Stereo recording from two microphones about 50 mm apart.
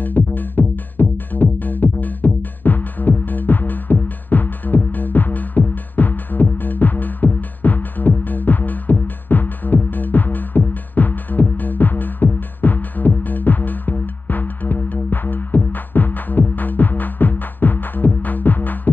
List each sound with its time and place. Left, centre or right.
0.0 s music: left